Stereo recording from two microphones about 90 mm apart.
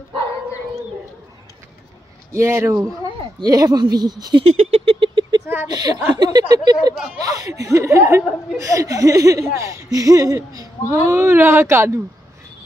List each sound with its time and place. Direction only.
2.3 s speech: 30° right (ahead or behind)
3.3 s speech: 45° right (ahead or behind)
4.4 s a sound: 85° right
5.7 s speech: 50° right (ahead or behind)
10.9 s speech: 30° right (ahead or behind)